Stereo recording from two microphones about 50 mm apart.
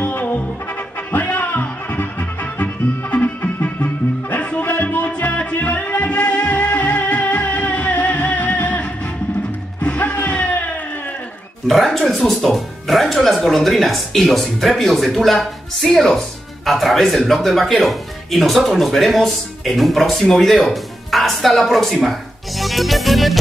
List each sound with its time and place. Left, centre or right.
0.0 s music: left
10.2 s a sound: left
11.6 s music: centre
12.1 s speech: centre